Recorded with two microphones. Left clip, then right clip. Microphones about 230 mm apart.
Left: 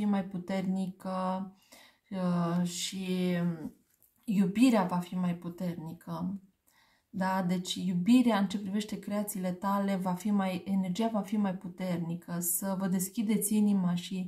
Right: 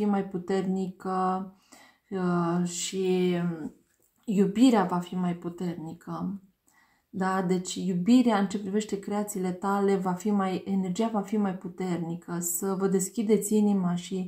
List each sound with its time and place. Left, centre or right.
0.0 s speech: left
7.2 s speech: left